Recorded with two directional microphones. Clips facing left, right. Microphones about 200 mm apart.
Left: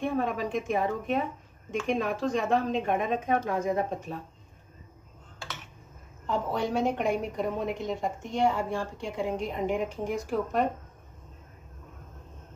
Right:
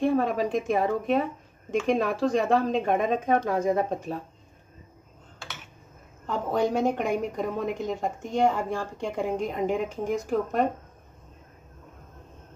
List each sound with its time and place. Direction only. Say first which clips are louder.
0.0 s speech: right 5 dB; 35° right (ahead or behind)
6.2 s a woman's voice: right 3 dB; 45° right (ahead or behind)